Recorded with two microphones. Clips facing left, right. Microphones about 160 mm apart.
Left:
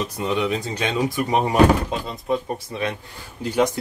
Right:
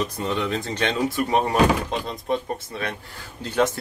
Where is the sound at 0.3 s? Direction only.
10° left (ahead or behind).